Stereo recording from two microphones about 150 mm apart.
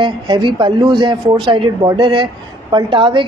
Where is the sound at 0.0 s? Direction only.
30° right (ahead or behind).